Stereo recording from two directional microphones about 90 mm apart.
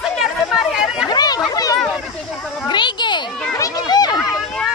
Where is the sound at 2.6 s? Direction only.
60° left (ahead or behind).